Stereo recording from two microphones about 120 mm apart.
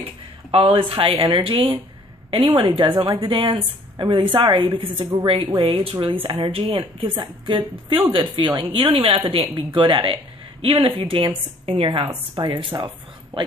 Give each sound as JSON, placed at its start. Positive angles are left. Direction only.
{"t": 0.0, "sound": "a woman's voice", "side_deg": -50}